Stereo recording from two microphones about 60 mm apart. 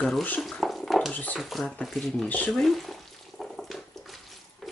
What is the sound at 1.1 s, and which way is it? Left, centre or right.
Speech, left.